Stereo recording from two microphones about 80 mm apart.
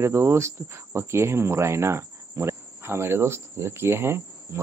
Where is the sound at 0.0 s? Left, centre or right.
Right.